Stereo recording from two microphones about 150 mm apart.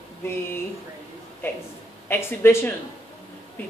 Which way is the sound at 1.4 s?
15° left (ahead or behind).